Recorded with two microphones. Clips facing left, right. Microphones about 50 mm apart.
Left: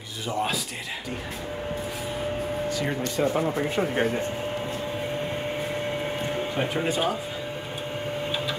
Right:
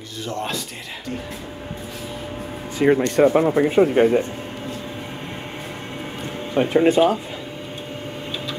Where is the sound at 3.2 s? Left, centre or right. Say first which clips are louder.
Right 8 dB; right.